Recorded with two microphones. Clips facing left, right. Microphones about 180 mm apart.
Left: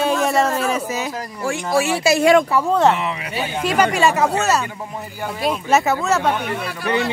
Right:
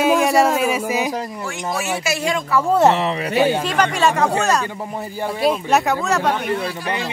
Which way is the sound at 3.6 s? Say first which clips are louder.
Left 1 dB; 10° left (ahead or behind).